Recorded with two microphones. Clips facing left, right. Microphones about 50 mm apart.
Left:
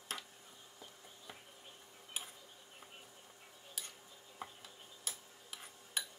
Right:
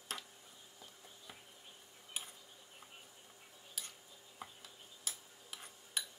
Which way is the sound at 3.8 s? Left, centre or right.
Centre.